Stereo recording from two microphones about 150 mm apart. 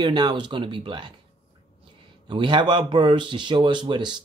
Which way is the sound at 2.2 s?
30° right (ahead or behind).